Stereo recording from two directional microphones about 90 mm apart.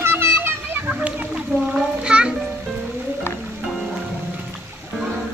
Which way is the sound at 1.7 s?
10° right (ahead or behind).